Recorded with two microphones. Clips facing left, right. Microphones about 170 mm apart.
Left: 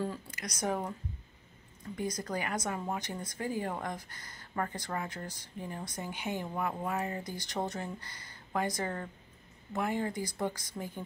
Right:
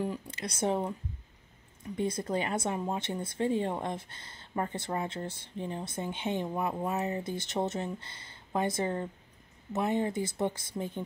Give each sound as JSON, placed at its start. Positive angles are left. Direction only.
{"t": 0.0, "sound": "speech", "side_deg": -25}
{"t": 2.0, "sound": "speech", "side_deg": -25}